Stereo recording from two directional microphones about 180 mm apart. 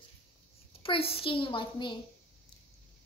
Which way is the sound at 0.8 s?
30° left (ahead or behind).